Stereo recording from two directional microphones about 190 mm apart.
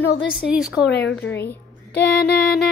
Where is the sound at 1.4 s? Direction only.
10° left (ahead or behind).